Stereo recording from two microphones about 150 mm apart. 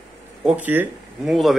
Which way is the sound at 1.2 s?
Centre (ahead or behind).